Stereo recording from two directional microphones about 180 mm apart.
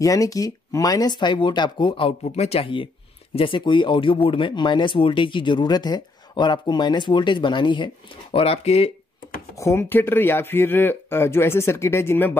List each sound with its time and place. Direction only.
0.0 s speech: 20° left (ahead or behind); by 8.9 s 35° left (ahead or behind)
9.6 s speech: 15° left (ahead or behind)